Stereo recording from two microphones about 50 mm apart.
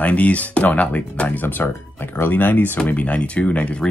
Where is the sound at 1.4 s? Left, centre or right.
Left.